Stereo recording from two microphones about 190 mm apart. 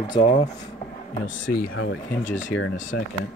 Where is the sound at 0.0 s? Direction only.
20° left (ahead or behind).